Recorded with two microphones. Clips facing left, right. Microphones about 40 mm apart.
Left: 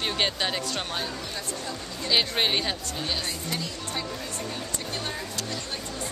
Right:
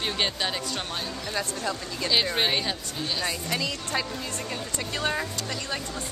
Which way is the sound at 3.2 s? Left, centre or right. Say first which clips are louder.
Right 3 dB; right.